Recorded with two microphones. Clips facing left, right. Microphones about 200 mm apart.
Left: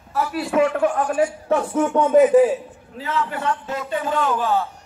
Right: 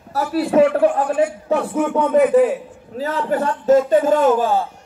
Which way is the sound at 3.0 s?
40° right (ahead or behind).